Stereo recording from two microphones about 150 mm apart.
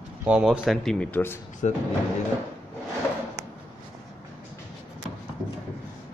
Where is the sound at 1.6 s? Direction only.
50° left (ahead or behind).